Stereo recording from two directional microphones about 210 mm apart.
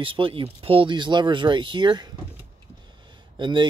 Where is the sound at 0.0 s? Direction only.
25° right (ahead or behind).